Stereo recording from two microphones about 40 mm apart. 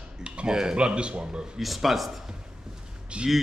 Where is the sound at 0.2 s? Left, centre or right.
Right.